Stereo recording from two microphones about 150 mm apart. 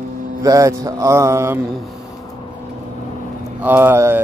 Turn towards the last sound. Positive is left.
turn(degrees=-15)  # may be behind; listen again after turning